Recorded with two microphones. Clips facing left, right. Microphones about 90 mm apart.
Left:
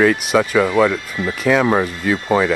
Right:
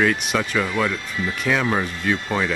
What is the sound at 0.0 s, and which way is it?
Speech, 5° left (ahead or behind).